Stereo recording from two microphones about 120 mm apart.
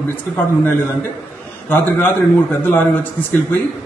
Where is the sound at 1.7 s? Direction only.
15° left (ahead or behind).